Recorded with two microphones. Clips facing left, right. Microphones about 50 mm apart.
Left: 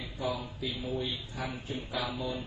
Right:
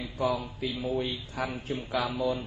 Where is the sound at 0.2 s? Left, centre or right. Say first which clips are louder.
Right 5 dB; right.